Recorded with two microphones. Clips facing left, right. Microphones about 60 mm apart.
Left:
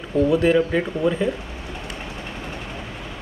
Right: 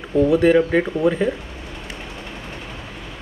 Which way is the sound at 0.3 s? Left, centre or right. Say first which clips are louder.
Right 3 dB; centre.